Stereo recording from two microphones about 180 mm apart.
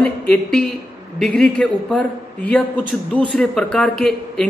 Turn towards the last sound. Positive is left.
turn(degrees=0)  # may be behind; listen again after turning